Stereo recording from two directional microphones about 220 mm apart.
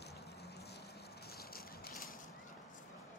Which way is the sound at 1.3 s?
45° left (ahead or behind).